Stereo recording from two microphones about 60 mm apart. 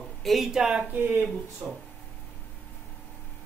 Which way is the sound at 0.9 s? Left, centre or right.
Right.